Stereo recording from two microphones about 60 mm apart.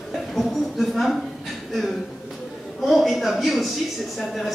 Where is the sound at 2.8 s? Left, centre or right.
Centre.